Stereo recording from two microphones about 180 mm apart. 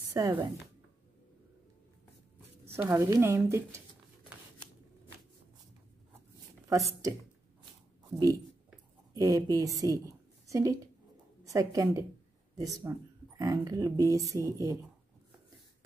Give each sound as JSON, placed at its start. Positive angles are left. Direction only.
{"t": 0.1, "sound": "a woman's voice", "side_deg": -15}
{"t": 2.6, "sound": "speech", "side_deg": -15}
{"t": 6.7, "sound": "speech", "side_deg": -20}
{"t": 9.1, "sound": "a woman's voice", "side_deg": -20}